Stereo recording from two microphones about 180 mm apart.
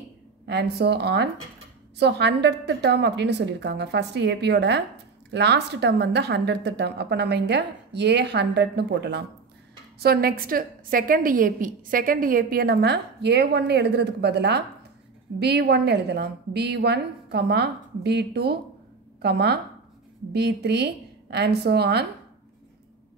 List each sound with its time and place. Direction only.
0.5 s a woman's voice: 65° right (ahead or behind)